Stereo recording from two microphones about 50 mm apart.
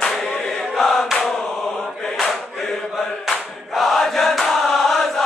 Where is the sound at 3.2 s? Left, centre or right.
Centre.